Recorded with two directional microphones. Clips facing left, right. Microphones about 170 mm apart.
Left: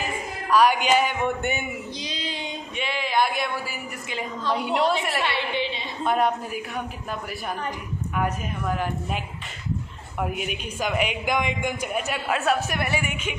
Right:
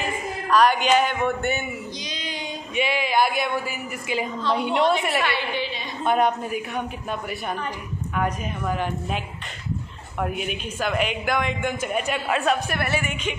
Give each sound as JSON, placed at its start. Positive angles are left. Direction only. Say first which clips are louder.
{"t": 0.5, "sound": "a man's voice", "louder": "right 1 dB", "side_deg": 10}
{"t": 2.0, "sound": "child singing", "louder": "left 1 dB", "side_deg": 30}
{"t": 2.7, "sound": "a woman's voice", "louder": "right 4 dB", "side_deg": -5}
{"t": 5.2, "sound": "a woman's voice", "louder": "even", "side_deg": 25}
{"t": 6.0, "sound": "a woman's voice", "louder": "right 2 dB", "side_deg": 0}
{"t": 10.2, "sound": "a man's voice", "louder": "right 1 dB", "side_deg": 5}
{"t": 12.7, "sound": "a man's voice", "louder": "right 1 dB", "side_deg": 15}